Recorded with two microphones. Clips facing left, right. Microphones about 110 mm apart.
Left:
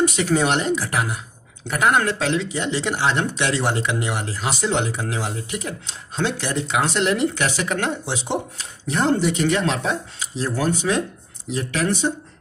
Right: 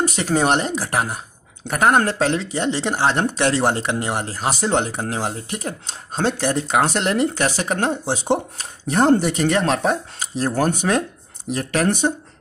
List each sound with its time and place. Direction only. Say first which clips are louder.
0.0 s speech: even; 40° right (ahead or behind)